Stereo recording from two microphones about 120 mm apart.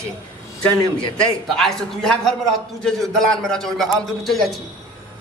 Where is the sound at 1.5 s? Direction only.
5° left (ahead or behind).